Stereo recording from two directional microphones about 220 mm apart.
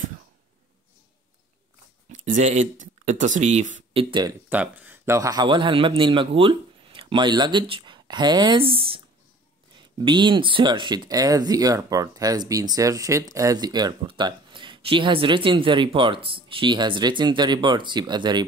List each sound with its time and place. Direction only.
2.1 s speech: 35° right (ahead or behind)
4.5 s a man's voice: 5° right (ahead or behind)